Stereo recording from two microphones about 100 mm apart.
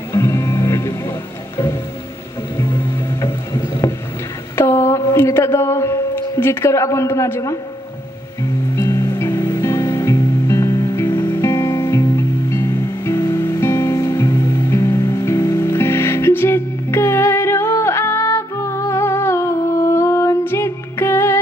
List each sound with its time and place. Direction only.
0.1 s music: 30° left (ahead or behind)
2.5 s music: 30° left (ahead or behind)
4.6 s a sound: 25° left (ahead or behind)
8.7 s music: 30° left (ahead or behind)